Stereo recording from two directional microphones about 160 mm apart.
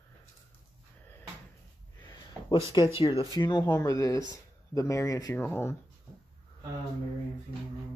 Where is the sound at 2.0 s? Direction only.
25° left (ahead or behind).